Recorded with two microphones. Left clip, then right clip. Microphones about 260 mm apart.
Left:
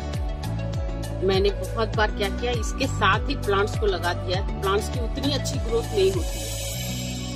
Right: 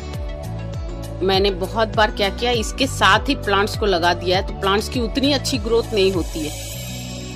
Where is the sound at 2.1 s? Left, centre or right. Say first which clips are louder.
Right 7 dB; right.